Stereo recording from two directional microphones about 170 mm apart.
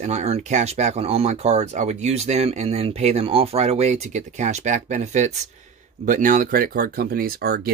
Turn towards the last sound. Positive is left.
turn(degrees=-65)  # may be behind; listen again after turning